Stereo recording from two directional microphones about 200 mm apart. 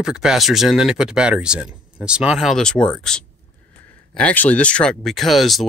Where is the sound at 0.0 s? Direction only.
5° right (ahead or behind).